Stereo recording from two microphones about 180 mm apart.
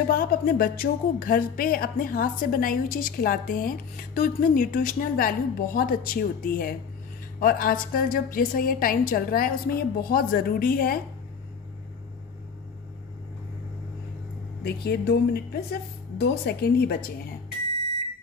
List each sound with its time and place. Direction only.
0.1 s speech: 55° left (ahead or behind)
14.6 s a woman's voice: 60° left (ahead or behind)